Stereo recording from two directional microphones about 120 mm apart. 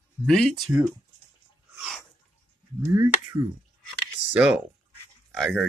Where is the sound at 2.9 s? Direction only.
25° right (ahead or behind).